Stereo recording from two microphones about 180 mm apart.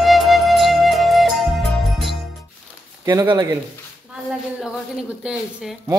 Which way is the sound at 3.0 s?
15° right (ahead or behind).